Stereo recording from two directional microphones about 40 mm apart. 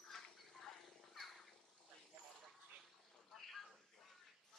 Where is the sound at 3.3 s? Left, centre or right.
Centre.